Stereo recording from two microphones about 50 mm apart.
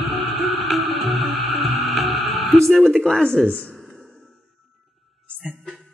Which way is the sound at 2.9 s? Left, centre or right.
Centre.